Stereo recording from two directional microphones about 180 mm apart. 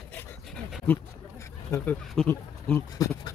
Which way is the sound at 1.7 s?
10° left (ahead or behind).